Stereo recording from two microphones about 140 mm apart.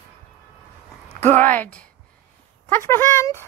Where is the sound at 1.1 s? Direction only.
55° right (ahead or behind).